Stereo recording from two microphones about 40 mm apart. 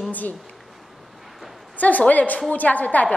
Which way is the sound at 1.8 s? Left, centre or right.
Left.